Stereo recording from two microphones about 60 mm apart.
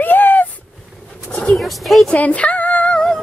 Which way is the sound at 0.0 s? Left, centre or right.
Left.